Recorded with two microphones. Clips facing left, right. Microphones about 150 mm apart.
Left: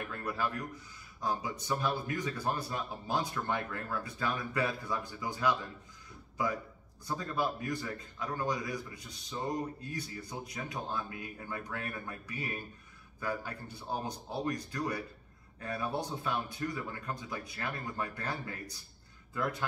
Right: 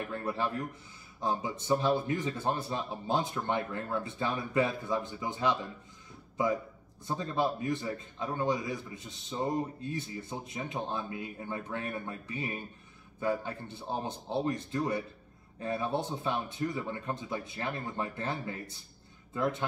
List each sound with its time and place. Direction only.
0.1 s a man's voice: 25° right (ahead or behind)